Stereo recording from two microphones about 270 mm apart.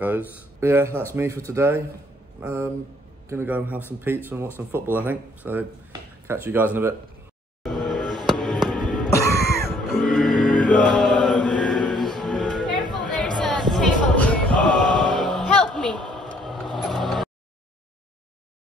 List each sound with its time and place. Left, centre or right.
0.6 s speech: centre
7.6 s music: centre
9.6 s mantra: centre
12.9 s music: centre
16.4 s vehicle: centre